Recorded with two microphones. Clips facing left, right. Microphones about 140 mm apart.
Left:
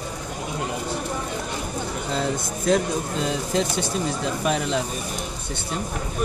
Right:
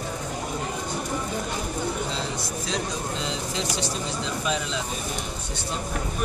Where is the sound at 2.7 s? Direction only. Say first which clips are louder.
Left 10 dB; 50° left (ahead or behind).